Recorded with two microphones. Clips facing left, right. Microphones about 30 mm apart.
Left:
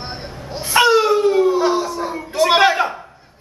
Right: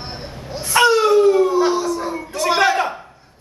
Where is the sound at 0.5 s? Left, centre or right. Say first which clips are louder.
Left 1 dB; centre.